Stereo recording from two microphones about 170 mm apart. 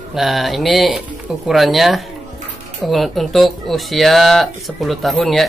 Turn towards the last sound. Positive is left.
turn(degrees=0)  # may be behind; listen again after turning